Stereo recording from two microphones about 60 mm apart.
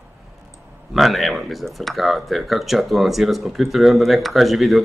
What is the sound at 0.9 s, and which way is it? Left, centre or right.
Speech, centre.